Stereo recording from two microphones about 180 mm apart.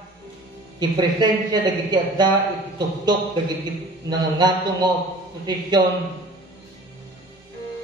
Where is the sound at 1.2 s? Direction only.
25° right (ahead or behind).